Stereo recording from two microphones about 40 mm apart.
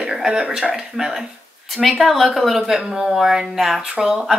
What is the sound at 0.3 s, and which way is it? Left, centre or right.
Speech, right.